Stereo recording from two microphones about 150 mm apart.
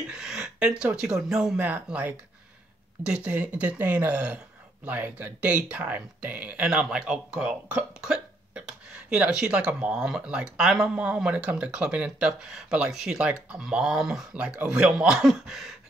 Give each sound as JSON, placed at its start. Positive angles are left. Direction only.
{"t": 0.1, "sound": "speech", "side_deg": -5}
{"t": 3.3, "sound": "speech", "side_deg": -10}